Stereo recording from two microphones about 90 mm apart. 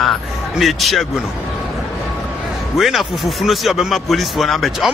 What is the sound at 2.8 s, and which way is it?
Speech, centre (ahead or behind).